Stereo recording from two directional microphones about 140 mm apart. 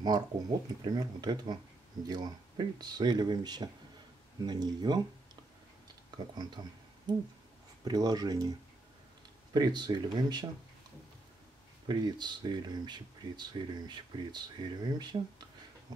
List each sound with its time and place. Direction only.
0.0 s speech: 30° right (ahead or behind)
6.6 s speech: 30° right (ahead or behind)
7.8 s speech: 30° right (ahead or behind)
9.5 s speech: 30° right (ahead or behind)
11.9 s speech: 30° right (ahead or behind)